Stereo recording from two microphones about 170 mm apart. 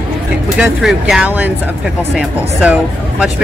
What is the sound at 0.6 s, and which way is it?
Speech, centre (ahead or behind).